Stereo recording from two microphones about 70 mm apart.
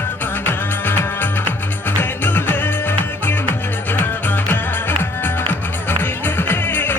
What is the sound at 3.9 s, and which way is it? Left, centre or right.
Music, left.